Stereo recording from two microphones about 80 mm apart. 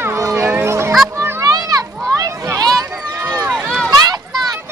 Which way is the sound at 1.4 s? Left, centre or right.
Right.